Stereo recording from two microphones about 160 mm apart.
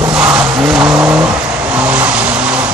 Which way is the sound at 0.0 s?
5° right (ahead or behind).